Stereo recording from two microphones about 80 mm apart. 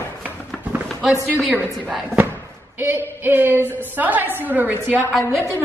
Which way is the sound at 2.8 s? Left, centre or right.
Right.